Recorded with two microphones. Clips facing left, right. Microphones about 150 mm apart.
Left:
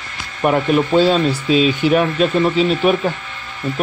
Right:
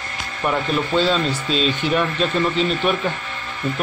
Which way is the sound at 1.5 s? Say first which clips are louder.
Left 8 dB; 10° left (ahead or behind).